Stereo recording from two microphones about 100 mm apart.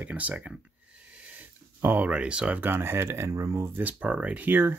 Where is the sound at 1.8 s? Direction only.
15° right (ahead or behind).